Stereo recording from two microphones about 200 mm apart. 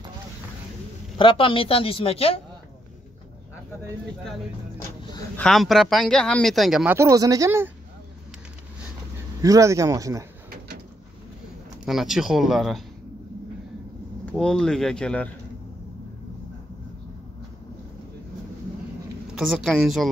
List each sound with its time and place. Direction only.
1.1 s speech: 25° left (ahead or behind)
5.4 s speech: centre (ahead or behind)
9.4 s speech: 15° right (ahead or behind)
11.8 s speech: centre (ahead or behind)
14.2 s speech: 5° left (ahead or behind)
19.3 s speech: centre (ahead or behind)